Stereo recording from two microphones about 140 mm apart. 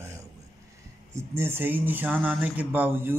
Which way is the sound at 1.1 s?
15° right (ahead or behind).